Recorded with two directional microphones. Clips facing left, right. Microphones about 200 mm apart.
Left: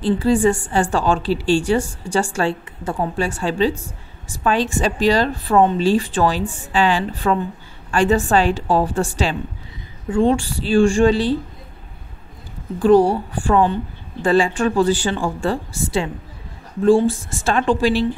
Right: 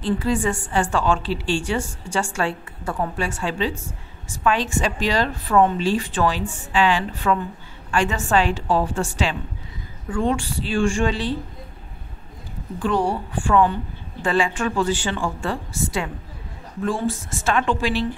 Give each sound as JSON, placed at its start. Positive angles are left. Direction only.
{"t": 0.0, "sound": "a woman's voice", "side_deg": 30}
{"t": 12.7, "sound": "a woman's voice", "side_deg": 35}